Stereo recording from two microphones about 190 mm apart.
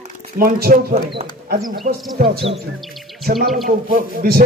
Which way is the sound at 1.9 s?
55° right (ahead or behind).